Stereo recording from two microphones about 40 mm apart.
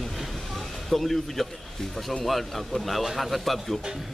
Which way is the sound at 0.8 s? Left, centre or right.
Centre.